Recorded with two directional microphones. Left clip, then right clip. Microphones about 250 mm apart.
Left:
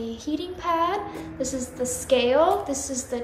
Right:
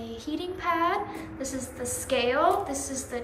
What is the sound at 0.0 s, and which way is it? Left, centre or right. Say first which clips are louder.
Child singing: left 4 dB; centre.